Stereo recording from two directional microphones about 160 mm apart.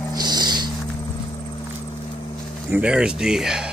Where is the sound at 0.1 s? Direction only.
25° right (ahead or behind).